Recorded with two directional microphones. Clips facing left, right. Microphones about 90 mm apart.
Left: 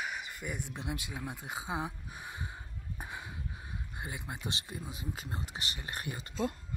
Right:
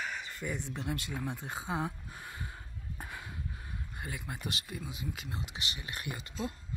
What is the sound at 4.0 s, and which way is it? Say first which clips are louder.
Speech: even; 20° left (ahead or behind).